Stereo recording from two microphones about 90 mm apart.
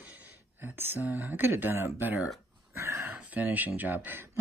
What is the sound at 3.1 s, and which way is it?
Speech, 20° right (ahead or behind).